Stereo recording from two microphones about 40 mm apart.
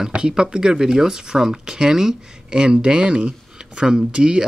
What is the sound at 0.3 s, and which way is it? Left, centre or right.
Speech, centre.